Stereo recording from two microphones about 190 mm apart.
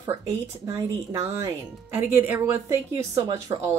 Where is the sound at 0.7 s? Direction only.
15° right (ahead or behind).